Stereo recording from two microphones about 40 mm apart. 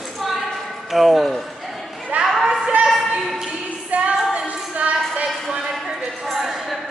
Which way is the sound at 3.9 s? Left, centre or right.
Right.